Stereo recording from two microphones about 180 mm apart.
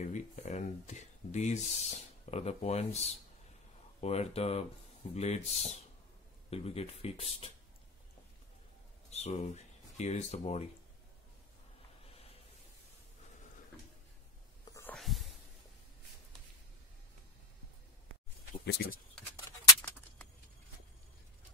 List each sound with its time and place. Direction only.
0.0 s speech: 40° left (ahead or behind)
9.1 s speech: 35° left (ahead or behind)
14.6 s whispering: 15° left (ahead or behind)
15.0 s a sound: centre (ahead or behind)
18.7 s speech: 55° left (ahead or behind)
19.3 s a sound: 10° left (ahead or behind)